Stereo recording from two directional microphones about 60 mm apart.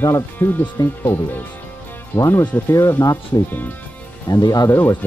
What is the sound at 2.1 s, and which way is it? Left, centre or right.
Speech, left.